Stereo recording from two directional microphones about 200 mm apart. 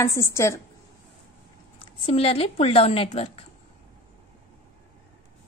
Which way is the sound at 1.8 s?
25° left (ahead or behind).